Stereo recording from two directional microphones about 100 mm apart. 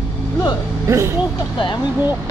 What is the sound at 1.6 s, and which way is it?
Speech, 50° left (ahead or behind).